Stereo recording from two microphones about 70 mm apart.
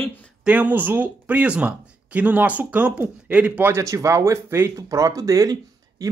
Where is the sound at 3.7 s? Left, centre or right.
Right.